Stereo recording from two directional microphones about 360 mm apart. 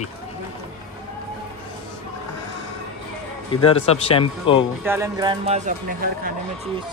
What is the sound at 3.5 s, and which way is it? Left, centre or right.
Speech, centre.